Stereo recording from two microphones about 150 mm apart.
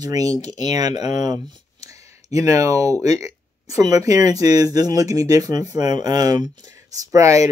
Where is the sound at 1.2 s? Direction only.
25° right (ahead or behind).